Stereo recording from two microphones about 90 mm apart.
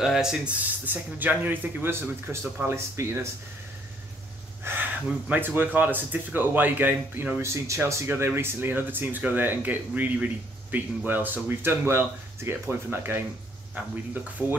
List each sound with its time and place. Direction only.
0.0 s speech: 5° right (ahead or behind)
0.6 s speech: 20° right (ahead or behind)
5.3 s speech: 20° right (ahead or behind)